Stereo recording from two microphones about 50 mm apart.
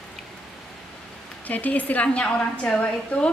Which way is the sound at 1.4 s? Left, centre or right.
Left.